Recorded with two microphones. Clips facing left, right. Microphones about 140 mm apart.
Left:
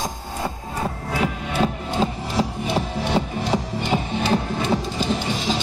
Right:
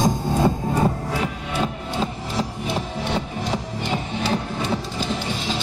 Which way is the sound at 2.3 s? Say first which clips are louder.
Left 2 dB; 10° left (ahead or behind).